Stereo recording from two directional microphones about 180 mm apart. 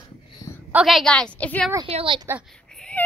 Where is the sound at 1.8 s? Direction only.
30° right (ahead or behind).